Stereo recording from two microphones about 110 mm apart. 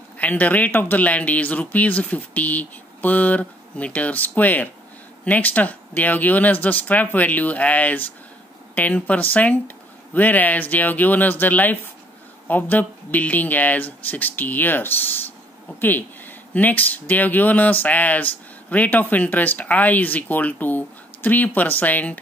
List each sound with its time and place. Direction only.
0.2 s speech: 15° left (ahead or behind)